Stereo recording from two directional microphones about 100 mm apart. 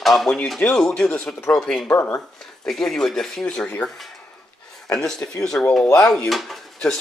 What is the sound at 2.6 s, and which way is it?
Speech, centre (ahead or behind).